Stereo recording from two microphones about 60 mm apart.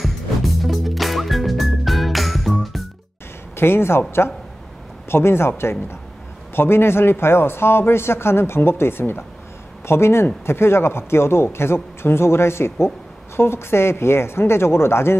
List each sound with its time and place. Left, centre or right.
0.0 s music: centre
3.5 s a man's voice: left
5.0 s speech: left